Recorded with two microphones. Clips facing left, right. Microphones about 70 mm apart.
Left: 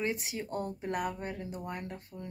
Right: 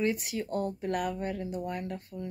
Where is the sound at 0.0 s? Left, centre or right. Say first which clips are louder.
Right 4 dB; left.